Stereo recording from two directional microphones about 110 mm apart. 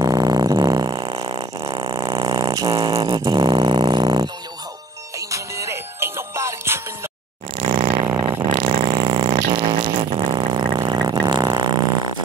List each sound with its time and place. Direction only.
0.0 s music: 35° right (ahead or behind)
1.6 s a sound: 45° right (ahead or behind)
3.2 s music: 40° right (ahead or behind)
5.3 s music: 25° right (ahead or behind)
7.5 s a sound: 50° right (ahead or behind)
7.9 s vehicle: 35° right (ahead or behind)
9.0 s vehicle: 50° right (ahead or behind)